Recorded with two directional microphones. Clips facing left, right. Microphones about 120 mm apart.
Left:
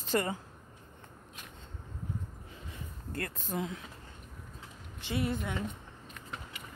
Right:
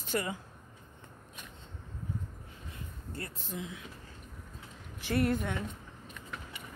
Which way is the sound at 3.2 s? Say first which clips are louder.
Left 5 dB; 55° left (ahead or behind).